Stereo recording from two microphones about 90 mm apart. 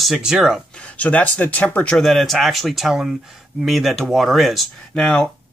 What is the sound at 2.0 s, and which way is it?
Speech, centre (ahead or behind).